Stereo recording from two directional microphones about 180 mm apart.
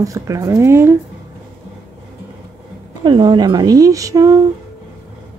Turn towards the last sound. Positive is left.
turn(degrees=-20)  # may be behind; listen again after turning